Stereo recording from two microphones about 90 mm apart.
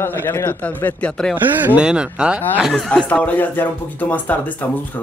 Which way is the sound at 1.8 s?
10° right (ahead or behind).